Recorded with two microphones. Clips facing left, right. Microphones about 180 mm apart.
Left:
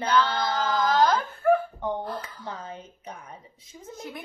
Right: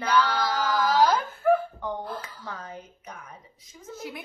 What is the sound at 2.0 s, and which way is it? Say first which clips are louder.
Speech: left 2 dB; centre (ahead or behind).